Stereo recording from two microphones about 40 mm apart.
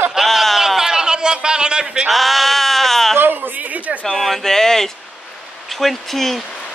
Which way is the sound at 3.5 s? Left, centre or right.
Right.